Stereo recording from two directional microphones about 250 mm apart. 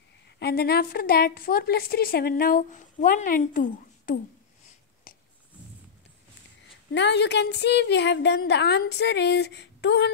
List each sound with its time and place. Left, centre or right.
0.4 s a woman's voice: left
5.1 s a sound: left
6.9 s speech: left